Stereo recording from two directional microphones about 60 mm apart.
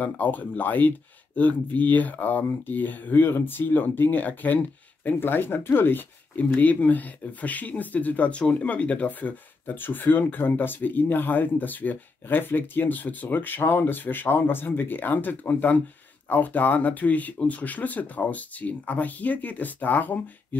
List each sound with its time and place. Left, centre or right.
0.0 s speech: left
6.3 s speech: left